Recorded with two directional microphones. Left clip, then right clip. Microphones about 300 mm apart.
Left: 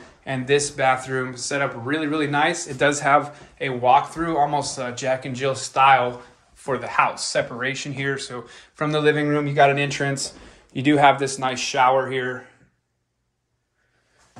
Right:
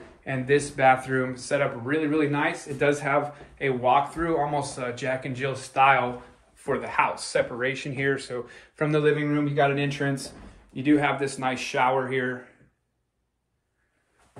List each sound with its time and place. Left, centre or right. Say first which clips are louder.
0.2 s speech: left 3 dB; centre
9.3 s speech: left 6 dB; left